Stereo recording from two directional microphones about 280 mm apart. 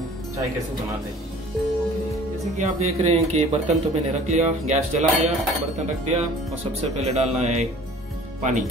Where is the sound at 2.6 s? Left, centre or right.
Right.